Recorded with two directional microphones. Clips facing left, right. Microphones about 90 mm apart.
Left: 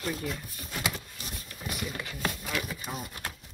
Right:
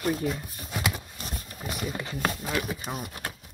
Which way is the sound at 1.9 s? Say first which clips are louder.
Right 4 dB; 25° right (ahead or behind).